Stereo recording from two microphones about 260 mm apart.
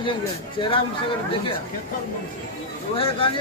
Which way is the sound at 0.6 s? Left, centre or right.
Centre.